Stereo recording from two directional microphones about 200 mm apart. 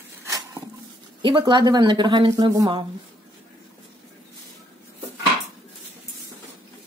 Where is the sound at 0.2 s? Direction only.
10° right (ahead or behind).